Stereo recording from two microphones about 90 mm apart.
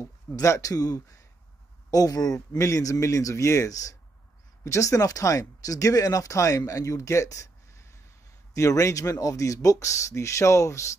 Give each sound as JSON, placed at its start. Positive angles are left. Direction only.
{"t": 0.4, "sound": "speech", "side_deg": 40}
{"t": 8.5, "sound": "speech", "side_deg": 35}